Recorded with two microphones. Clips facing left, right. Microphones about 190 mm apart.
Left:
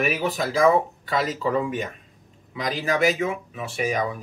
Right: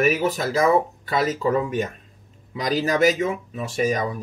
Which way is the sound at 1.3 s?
45° right (ahead or behind).